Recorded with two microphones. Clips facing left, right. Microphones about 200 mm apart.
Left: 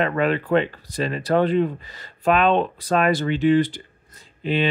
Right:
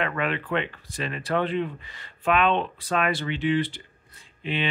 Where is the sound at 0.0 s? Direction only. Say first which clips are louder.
Left 6 dB; 35° left (ahead or behind).